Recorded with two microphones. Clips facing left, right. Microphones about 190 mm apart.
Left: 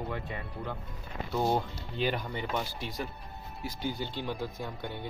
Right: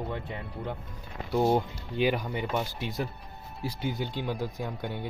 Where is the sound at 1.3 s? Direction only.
10° right (ahead or behind).